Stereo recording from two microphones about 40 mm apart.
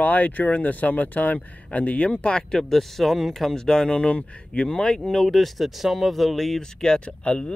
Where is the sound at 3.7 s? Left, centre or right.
Left.